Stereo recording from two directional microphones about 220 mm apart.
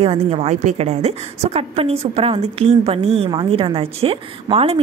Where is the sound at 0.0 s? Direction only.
25° right (ahead or behind).